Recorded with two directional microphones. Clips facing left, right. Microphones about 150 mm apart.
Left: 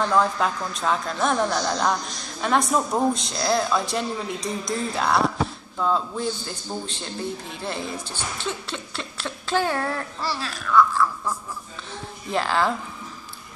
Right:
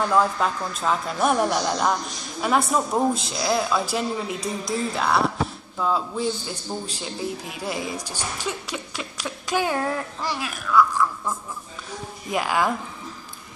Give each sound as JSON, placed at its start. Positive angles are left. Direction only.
{"t": 0.0, "sound": "a man's voice", "side_deg": -5}